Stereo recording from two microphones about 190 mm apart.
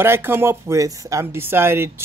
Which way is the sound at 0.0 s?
10° right (ahead or behind).